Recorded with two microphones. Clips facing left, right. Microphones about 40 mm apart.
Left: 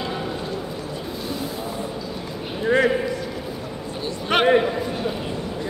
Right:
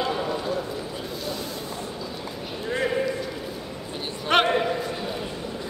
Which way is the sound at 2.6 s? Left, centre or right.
Left.